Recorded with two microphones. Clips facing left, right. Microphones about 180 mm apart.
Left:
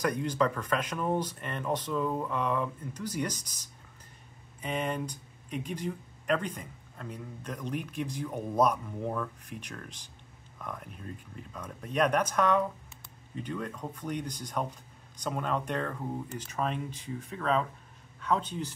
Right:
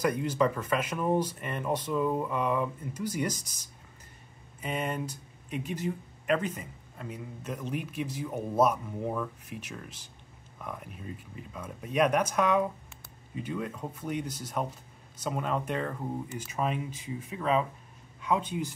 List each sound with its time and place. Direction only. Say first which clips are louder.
0.0 s speech: right 2 dB; 5° right (ahead or behind)